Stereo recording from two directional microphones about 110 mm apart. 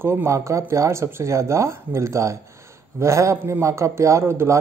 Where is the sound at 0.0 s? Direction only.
20° right (ahead or behind).